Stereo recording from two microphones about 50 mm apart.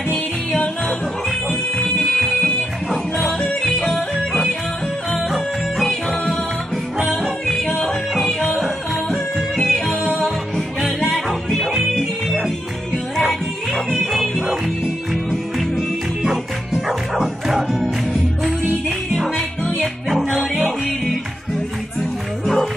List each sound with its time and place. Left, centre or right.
1.5 s music: centre
2.9 s yodeling: centre
5.1 s music: centre
7.8 s music: centre
11.1 s music: centre
16.7 s music: centre